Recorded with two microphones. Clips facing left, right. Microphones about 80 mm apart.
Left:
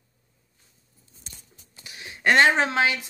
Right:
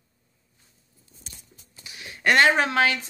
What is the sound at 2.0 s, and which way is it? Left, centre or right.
Speech, left.